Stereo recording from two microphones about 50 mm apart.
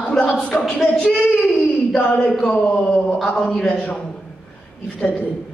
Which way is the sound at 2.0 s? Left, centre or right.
Left.